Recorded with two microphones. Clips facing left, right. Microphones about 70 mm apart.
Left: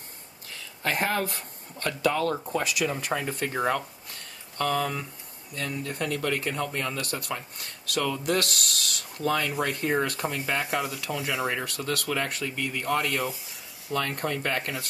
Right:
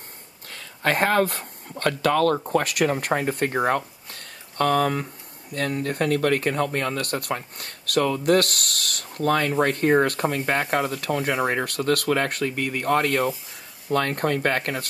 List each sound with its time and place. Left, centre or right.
0.5 s speech: right
13.3 s a sound: centre
13.9 s speech: right